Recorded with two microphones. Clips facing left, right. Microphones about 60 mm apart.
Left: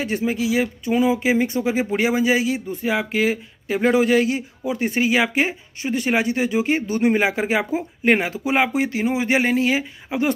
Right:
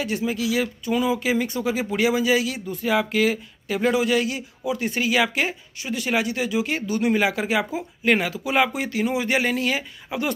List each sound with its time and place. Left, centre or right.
0.0 s speech: left